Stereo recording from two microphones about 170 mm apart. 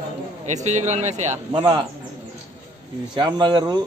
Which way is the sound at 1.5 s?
25° right (ahead or behind).